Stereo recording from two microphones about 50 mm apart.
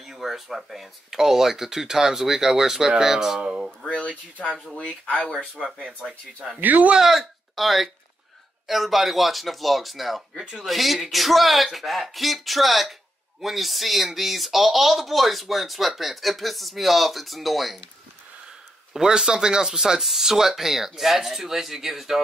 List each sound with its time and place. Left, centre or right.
0.0 s speech: centre
3.8 s speech: centre
5.6 s speech: centre
6.6 s speech: right
7.0 s speech: centre
18.9 s speech: centre